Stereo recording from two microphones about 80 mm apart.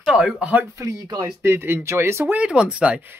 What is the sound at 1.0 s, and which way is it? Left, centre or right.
Speech, right.